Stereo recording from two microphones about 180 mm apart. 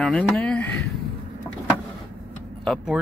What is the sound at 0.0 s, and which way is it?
Speech, 5° left (ahead or behind).